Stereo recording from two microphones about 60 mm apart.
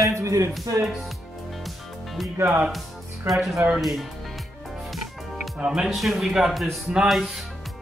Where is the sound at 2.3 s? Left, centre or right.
Right.